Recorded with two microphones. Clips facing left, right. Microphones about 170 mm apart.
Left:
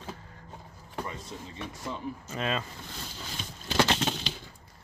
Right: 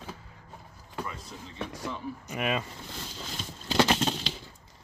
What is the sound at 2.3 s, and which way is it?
Speech, 15° right (ahead or behind).